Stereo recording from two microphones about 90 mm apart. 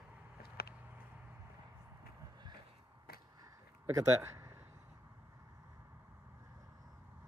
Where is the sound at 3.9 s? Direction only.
30° right (ahead or behind).